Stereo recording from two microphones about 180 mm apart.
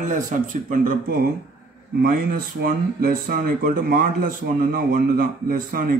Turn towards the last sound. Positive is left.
turn(degrees=-50)  # may be behind; listen again after turning